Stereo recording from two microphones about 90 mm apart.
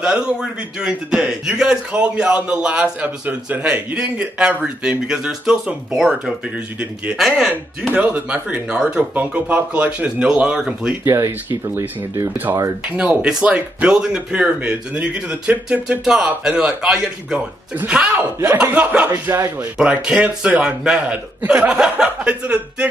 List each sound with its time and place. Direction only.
0.0 s a man's voice: 10° right (ahead or behind)
11.1 s a man's voice: 30° right (ahead or behind); by 16.0 s 15° right (ahead or behind)
16.0 s a man's voice: 5° right (ahead or behind)
19.3 s speech: 35° right (ahead or behind)
19.6 s a man's voice: 15° right (ahead or behind)